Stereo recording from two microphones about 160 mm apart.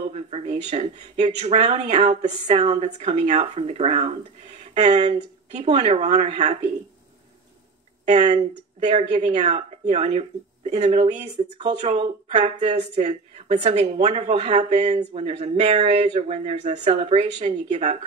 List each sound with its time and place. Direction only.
0.1 s speech: 45° right (ahead or behind)
8.0 s speech: 45° right (ahead or behind)